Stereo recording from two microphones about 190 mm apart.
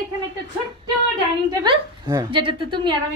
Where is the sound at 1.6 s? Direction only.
20° right (ahead or behind).